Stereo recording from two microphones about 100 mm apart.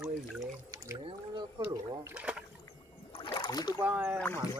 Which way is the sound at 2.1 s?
10° right (ahead or behind).